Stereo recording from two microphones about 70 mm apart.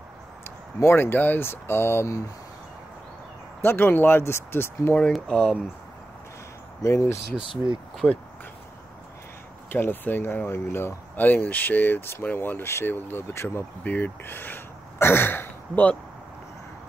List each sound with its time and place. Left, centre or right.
0.4 s speech: left
3.6 s speech: left
5.3 s speech: centre
6.8 s speech: left
8.0 s speech: left
9.7 s speech: left
13.8 s speech: left